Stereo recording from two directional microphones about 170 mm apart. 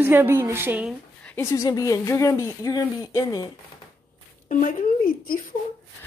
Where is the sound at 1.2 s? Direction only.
15° left (ahead or behind).